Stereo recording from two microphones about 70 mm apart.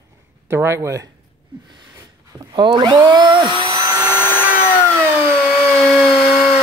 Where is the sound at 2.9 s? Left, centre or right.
Right.